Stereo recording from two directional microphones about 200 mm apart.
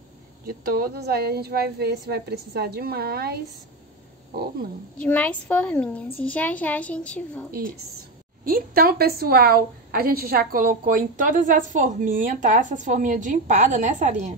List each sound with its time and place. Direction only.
0.5 s a woman's voice: 45° right (ahead or behind)
4.9 s a woman's voice: 5° left (ahead or behind)
8.5 s a woman's voice: 45° right (ahead or behind)